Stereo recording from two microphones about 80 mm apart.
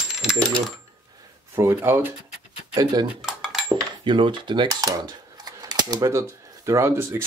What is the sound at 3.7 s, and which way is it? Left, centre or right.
Cutlery, right.